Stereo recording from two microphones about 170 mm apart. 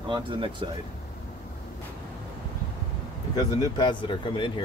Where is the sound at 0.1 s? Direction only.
30° right (ahead or behind).